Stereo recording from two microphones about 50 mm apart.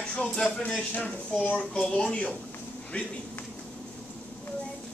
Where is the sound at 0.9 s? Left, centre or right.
Left.